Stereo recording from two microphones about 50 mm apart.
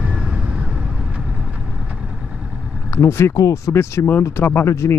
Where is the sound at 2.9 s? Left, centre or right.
Left.